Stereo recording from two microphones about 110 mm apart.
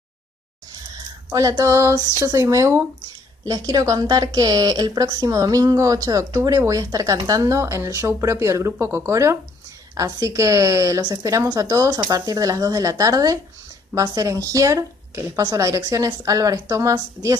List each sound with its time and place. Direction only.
0.9 s a woman's voice: 35° right (ahead or behind)